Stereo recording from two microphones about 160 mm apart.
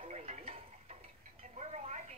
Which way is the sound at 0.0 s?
40° right (ahead or behind).